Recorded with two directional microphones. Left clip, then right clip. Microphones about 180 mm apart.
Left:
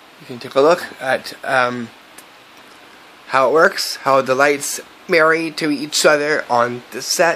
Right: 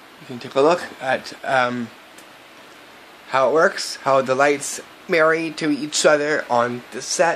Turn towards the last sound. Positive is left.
turn(degrees=25)  # may be behind; listen again after turning